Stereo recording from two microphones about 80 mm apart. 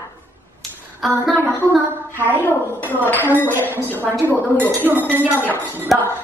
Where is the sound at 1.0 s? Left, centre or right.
Centre.